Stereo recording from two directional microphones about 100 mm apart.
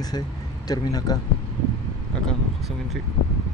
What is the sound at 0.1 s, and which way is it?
Speech, 50° left (ahead or behind).